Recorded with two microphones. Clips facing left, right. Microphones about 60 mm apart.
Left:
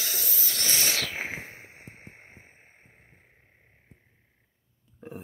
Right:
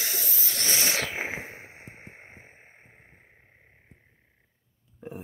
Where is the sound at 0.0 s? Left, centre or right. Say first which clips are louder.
Right 1 dB; right.